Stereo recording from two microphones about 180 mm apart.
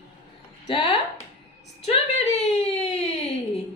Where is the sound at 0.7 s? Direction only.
30° left (ahead or behind).